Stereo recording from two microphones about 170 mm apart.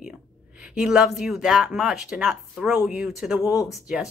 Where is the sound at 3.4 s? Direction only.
20° left (ahead or behind).